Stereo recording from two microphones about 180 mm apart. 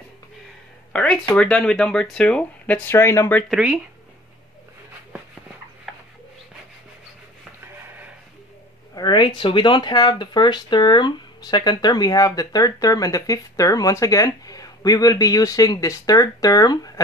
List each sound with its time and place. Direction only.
0.9 s speech: 5° left (ahead or behind)
3.4 s speech: 5° right (ahead or behind)
5.9 s bird: centre (ahead or behind)
8.9 s speech: 25° left (ahead or behind)